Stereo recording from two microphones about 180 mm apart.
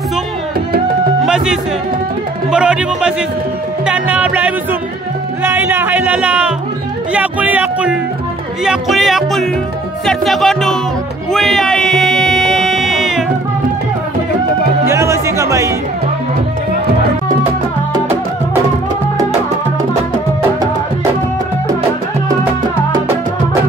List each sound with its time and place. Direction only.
1.2 s speech: 5° right (ahead or behind)
2.5 s music: 5° right (ahead or behind)
3.8 s speech: 5° right (ahead or behind)
8.6 s music: centre (ahead or behind)
14.9 s speech: 15° right (ahead or behind)